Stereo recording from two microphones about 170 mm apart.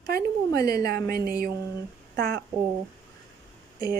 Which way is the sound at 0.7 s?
65° right (ahead or behind).